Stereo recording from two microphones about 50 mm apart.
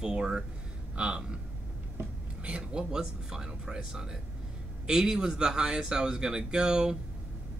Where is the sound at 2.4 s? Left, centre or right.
Right.